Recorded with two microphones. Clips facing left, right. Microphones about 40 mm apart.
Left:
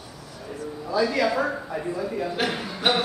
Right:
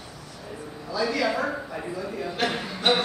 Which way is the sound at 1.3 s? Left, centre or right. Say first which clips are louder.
Left 2 dB; centre.